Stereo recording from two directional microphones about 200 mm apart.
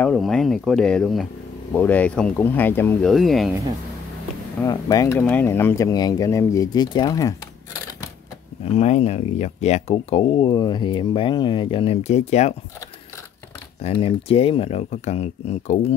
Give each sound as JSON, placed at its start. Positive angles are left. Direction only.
{"t": 0.0, "sound": "speech", "side_deg": 5}
{"t": 4.6, "sound": "speech", "side_deg": 15}
{"t": 8.7, "sound": "speech", "side_deg": 30}
{"t": 13.8, "sound": "speech", "side_deg": 25}